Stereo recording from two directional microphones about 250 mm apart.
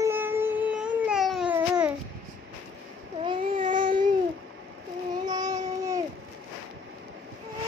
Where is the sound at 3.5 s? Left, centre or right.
Right.